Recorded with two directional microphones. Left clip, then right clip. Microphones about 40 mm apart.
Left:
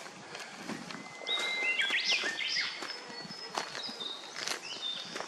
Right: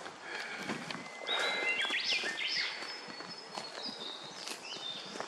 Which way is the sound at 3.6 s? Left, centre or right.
Left.